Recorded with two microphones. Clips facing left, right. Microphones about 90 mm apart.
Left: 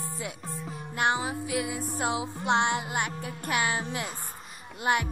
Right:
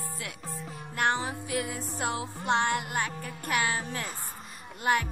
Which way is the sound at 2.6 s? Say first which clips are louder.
Left 1 dB; 20° left (ahead or behind).